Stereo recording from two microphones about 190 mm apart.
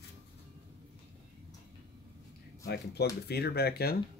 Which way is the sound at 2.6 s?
60° left (ahead or behind).